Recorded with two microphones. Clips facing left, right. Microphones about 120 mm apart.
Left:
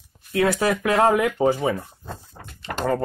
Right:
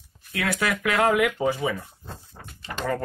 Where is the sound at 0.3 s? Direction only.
30° left (ahead or behind).